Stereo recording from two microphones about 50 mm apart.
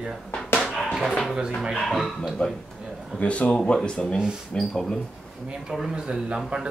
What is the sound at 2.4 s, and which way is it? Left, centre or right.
Speech, left.